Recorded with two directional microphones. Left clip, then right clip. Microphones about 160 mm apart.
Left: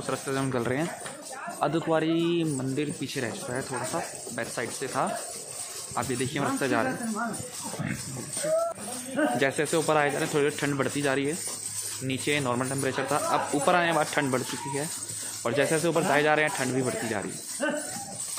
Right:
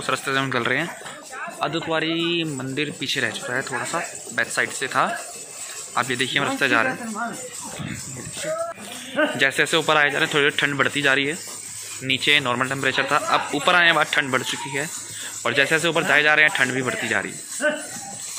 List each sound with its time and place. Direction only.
0.0 s speech: 5° left (ahead or behind)
1.6 s speech: 30° left (ahead or behind)
2.5 s speech: 10° left (ahead or behind)
9.4 s speech: 5° left (ahead or behind)
17.6 s speech: 35° left (ahead or behind)